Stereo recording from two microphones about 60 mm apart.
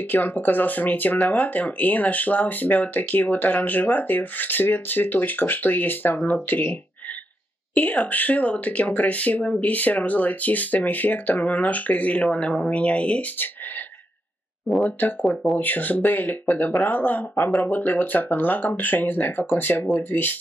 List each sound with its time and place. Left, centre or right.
0.1 s speech: left
14.9 s speech: left